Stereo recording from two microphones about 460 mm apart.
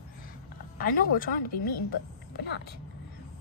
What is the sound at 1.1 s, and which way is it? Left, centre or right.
Speech, centre.